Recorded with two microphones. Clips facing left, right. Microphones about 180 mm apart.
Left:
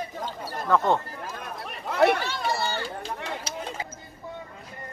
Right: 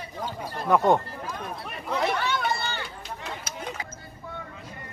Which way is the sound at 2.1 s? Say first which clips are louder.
Right 3 dB; 60° right (ahead or behind).